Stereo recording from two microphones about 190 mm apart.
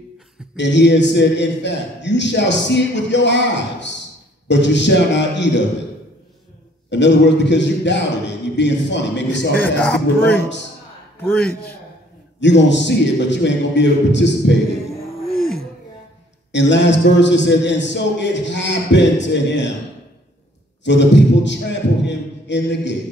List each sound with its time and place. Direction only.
0.6 s a man's voice: 70° left (ahead or behind)
6.9 s a man's voice: 70° left (ahead or behind)
9.6 s speech: 5° left (ahead or behind)
12.4 s a man's voice: 70° left (ahead or behind)
16.5 s a man's voice: 70° left (ahead or behind)
20.8 s a man's voice: 70° left (ahead or behind)